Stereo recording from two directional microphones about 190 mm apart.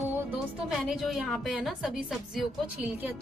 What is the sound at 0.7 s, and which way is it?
A woman's voice, centre (ahead or behind).